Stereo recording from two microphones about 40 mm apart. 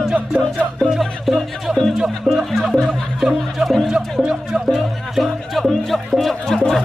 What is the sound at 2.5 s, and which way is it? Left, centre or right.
Music, centre.